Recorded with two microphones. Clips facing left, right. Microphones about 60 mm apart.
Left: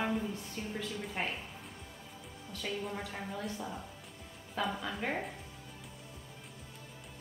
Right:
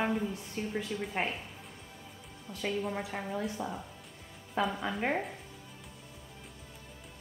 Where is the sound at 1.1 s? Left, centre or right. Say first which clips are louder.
Right 3 dB; centre.